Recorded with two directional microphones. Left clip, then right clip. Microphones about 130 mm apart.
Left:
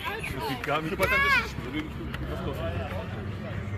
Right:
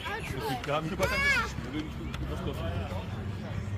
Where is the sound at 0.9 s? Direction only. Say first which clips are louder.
Left 5 dB; 10° right (ahead or behind).